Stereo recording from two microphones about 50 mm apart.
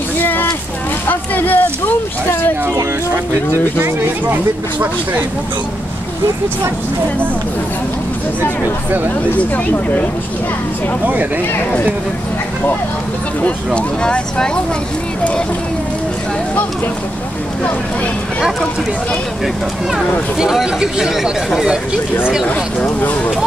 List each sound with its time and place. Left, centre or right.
0.2 s a sound: left
1.0 s speech: left
9.4 s speech: left
13.7 s speech: left
19.4 s speech: centre
22.5 s speech: left